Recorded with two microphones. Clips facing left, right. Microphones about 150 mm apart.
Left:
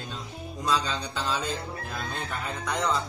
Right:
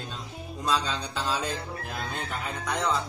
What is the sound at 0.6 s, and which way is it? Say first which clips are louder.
Music: even; centre (ahead or behind).